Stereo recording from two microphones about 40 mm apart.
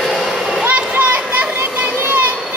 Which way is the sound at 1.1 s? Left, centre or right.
Right.